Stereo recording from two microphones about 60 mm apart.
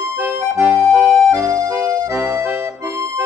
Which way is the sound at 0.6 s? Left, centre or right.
Right.